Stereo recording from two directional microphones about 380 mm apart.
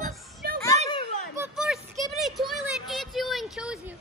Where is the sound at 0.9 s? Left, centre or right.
Centre.